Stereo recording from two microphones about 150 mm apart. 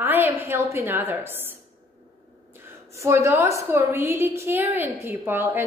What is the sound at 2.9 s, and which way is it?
A woman's voice, 20° right (ahead or behind).